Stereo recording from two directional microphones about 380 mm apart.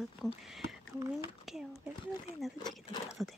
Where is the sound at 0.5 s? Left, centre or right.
Centre.